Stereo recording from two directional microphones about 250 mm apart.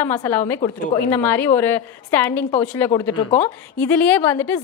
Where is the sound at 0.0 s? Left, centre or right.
Centre.